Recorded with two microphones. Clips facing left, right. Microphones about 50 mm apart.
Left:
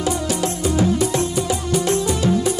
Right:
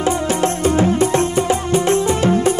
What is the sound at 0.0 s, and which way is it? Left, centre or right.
Music, right.